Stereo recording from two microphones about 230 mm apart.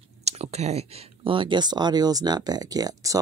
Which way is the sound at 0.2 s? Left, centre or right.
Right.